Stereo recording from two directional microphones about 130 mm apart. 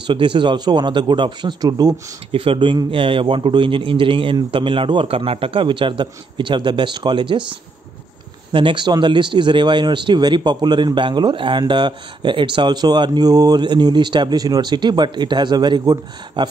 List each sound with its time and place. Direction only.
0.0 s speech: 40° right (ahead or behind)
2.3 s speech: 45° right (ahead or behind)
8.5 s speech: 40° right (ahead or behind)